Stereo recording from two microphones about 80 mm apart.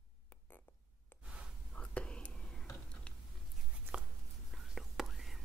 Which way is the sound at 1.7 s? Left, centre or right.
Centre.